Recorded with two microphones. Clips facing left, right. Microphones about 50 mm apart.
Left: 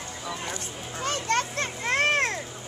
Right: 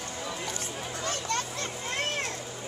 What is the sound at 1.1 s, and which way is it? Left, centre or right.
Children playing, left.